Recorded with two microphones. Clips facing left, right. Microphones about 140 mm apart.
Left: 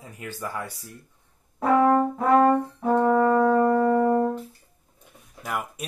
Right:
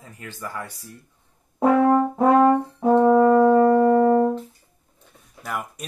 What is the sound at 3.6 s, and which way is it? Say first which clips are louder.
Music: right 4 dB; 25° right (ahead or behind).